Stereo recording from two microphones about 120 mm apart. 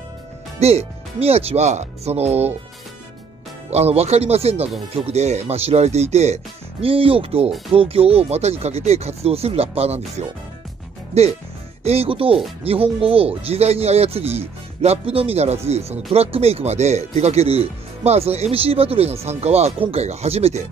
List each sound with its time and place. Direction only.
0.6 s speech: 60° right (ahead or behind)
3.7 s speech: 60° right (ahead or behind)